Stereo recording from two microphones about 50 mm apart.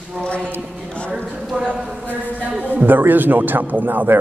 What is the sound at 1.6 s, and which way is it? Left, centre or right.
Speech, right.